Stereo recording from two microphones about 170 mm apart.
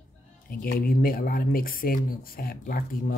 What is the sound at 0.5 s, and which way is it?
Speech, 60° left (ahead or behind).